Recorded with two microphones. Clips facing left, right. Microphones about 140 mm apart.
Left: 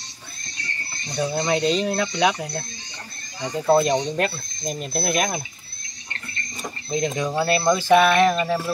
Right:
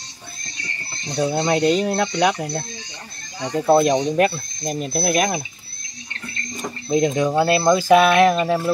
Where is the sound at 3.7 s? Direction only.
10° right (ahead or behind).